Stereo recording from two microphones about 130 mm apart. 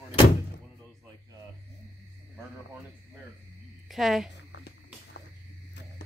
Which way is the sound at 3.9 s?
Centre (ahead or behind).